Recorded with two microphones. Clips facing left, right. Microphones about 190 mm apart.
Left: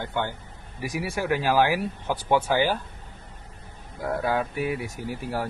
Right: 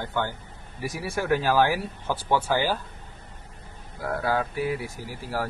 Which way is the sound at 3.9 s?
25° left (ahead or behind).